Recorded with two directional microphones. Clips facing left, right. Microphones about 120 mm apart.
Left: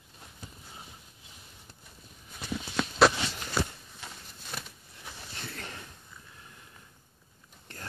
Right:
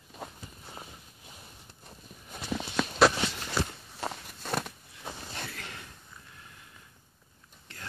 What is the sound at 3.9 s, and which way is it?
Walk, 60° right (ahead or behind).